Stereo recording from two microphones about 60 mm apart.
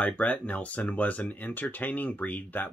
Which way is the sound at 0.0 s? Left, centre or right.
Left.